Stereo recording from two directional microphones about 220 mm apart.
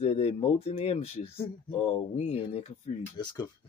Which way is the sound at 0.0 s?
30° left (ahead or behind).